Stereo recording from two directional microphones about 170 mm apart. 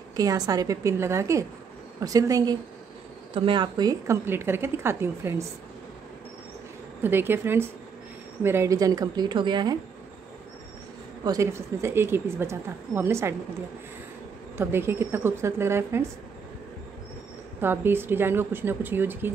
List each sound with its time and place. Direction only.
0.1 s speech: 20° right (ahead or behind)
7.0 s speech: 10° right (ahead or behind)
11.2 s speech: 20° right (ahead or behind)
14.6 s speech: 15° right (ahead or behind)
17.6 s speech: 15° right (ahead or behind)